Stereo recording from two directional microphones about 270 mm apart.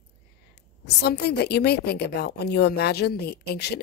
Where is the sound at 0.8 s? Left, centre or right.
Left.